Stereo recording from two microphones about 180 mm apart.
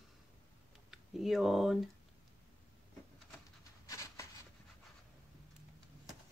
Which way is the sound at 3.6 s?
15° left (ahead or behind).